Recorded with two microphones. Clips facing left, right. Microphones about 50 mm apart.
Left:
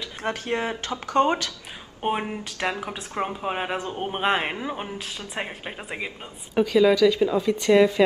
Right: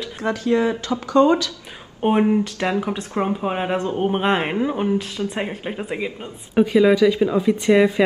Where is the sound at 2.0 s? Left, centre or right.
Centre.